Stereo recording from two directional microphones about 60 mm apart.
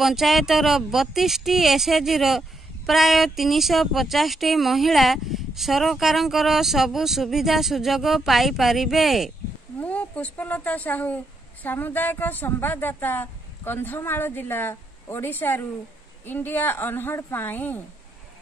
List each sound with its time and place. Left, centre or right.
0.0 s speech: centre
9.8 s a woman's voice: left